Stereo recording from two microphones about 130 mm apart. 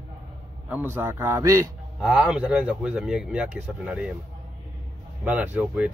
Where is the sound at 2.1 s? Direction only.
10° right (ahead or behind).